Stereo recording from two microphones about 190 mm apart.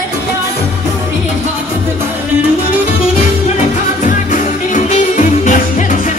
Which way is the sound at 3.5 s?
40° left (ahead or behind).